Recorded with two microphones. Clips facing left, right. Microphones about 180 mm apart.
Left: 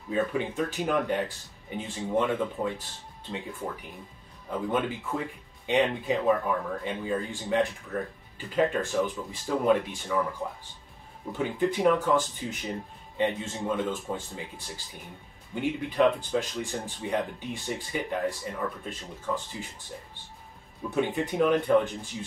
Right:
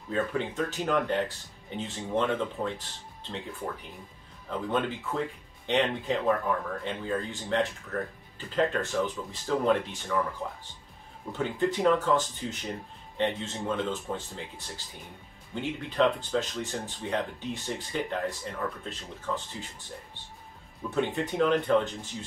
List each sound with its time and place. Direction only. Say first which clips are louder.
0.1 s speech: left 2 dB; 10° left (ahead or behind)
11.3 s speech: left 1 dB; 15° left (ahead or behind)
15.5 s speech: left 3 dB; 15° left (ahead or behind)
20.9 s speech: left 1 dB; 15° left (ahead or behind)